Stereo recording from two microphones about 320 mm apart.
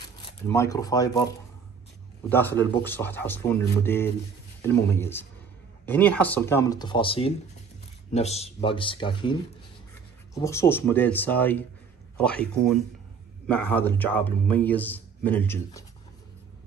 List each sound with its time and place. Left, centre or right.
0.5 s a man's voice: centre